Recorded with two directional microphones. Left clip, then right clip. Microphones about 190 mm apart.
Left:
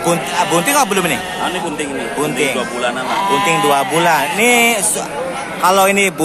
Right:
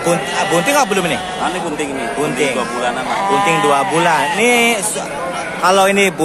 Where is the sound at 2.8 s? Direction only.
25° left (ahead or behind).